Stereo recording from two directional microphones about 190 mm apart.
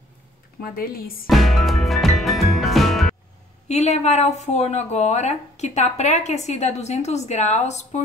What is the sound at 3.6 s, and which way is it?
A woman's voice, 35° left (ahead or behind).